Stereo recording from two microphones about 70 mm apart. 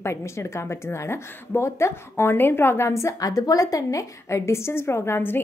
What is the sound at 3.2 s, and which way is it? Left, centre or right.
A woman's voice, left.